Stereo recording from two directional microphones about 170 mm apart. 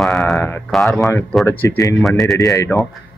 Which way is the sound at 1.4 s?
15° left (ahead or behind).